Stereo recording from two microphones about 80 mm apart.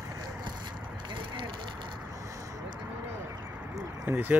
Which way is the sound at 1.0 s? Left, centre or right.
Right.